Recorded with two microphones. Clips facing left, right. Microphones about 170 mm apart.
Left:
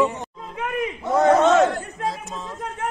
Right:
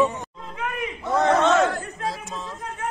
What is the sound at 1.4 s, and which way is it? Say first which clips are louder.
Chatter: left 3 dB; 40° left (ahead or behind).